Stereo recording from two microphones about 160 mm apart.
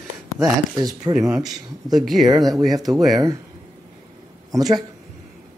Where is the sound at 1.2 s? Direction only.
5° right (ahead or behind).